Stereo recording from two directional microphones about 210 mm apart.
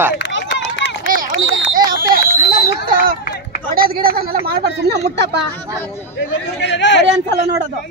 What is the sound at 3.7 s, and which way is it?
A woman's voice, 45° right (ahead or behind).